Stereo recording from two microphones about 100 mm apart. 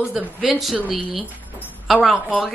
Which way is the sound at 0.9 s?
60° right (ahead or behind).